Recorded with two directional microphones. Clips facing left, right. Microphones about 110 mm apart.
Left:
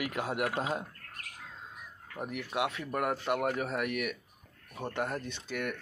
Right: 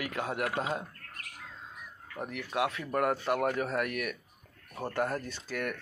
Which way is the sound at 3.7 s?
10° left (ahead or behind).